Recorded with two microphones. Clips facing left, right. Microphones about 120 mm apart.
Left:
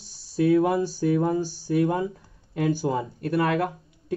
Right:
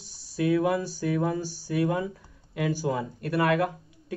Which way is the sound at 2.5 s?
35° left (ahead or behind).